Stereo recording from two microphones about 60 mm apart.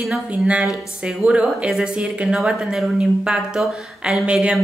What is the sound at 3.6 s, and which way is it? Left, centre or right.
Speech, centre.